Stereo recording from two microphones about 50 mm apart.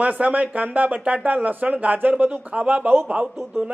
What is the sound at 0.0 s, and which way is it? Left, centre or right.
Speech, right.